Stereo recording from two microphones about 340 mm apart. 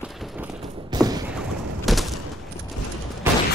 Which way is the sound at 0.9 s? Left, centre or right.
Centre.